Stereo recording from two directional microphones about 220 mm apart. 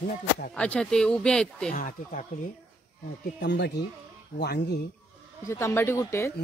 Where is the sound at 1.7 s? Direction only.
40° left (ahead or behind).